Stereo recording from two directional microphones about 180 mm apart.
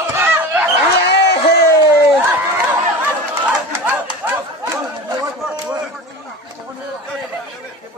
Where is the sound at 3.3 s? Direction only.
10° right (ahead or behind).